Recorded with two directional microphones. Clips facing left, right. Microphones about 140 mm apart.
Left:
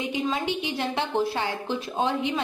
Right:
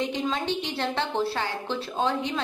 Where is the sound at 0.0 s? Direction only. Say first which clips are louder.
Even; 10° left (ahead or behind).